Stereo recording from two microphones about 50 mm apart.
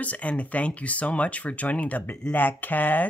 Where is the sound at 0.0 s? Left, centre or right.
Left.